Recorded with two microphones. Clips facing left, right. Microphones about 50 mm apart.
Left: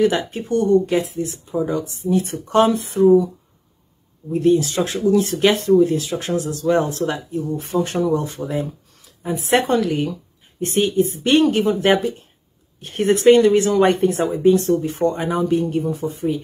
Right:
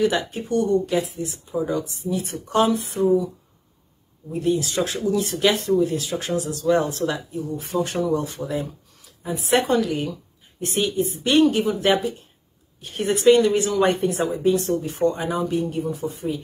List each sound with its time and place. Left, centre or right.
0.0 s speech: left
4.3 s speech: left